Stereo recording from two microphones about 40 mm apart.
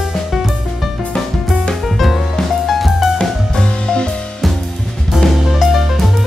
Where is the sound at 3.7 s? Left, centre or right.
Left.